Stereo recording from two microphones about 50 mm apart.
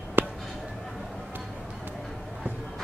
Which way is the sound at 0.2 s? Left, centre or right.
Right.